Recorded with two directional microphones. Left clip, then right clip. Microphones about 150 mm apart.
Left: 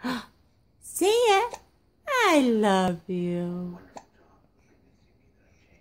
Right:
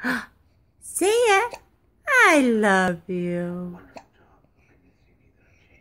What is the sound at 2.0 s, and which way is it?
Wail, 15° left (ahead or behind).